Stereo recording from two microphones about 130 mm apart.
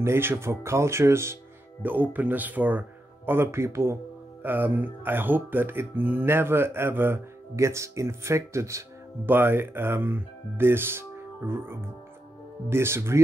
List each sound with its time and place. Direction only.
0.0 s speech: 20° right (ahead or behind)